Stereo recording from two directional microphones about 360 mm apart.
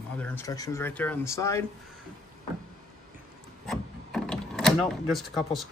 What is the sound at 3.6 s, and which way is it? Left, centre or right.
Drawer open or close, centre.